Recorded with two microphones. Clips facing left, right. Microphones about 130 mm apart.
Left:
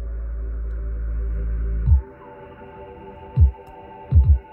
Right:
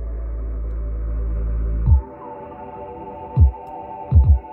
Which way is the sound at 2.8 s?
45° right (ahead or behind).